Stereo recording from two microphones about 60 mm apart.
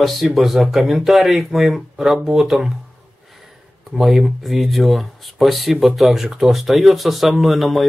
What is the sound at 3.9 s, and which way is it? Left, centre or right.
Speech, centre.